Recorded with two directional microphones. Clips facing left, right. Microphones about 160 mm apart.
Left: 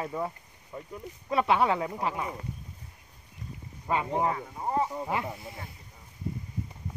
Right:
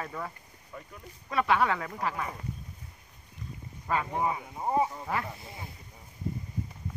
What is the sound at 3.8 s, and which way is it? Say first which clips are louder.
Speech: left 2 dB; 20° left (ahead or behind).